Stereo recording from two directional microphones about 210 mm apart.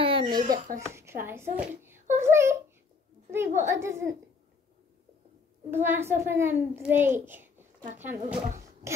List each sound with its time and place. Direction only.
0.0 s a sound: 25° right (ahead or behind)
0.7 s a child's voice: 10° right (ahead or behind)
5.7 s a child's voice: 10° right (ahead or behind)